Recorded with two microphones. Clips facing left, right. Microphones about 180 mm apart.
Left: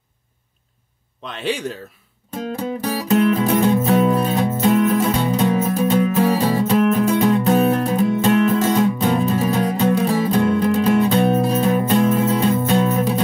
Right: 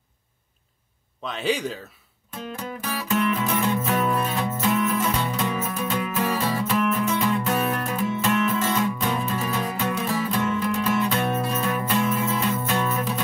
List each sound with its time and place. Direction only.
2.4 s music: 35° left (ahead or behind)